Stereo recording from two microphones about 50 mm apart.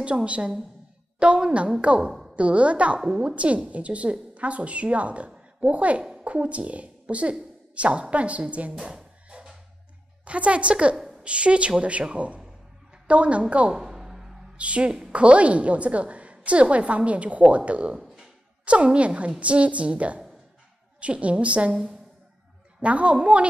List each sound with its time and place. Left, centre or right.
0.0 s a woman's voice: right
10.2 s a woman's voice: right
13.7 s music: centre
14.6 s a woman's voice: right
22.8 s a woman's voice: right